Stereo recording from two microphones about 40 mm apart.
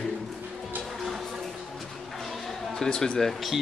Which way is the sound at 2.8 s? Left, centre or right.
Centre.